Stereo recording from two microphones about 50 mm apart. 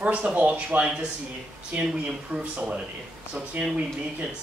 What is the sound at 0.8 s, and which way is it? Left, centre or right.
Speech, centre.